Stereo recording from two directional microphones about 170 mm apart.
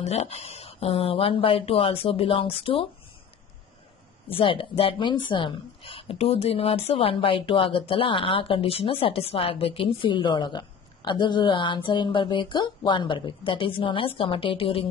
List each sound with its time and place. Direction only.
0.0 s speech: 40° left (ahead or behind)
4.3 s speech: 30° left (ahead or behind)